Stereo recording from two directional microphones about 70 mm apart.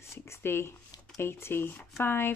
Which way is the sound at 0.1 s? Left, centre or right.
Left.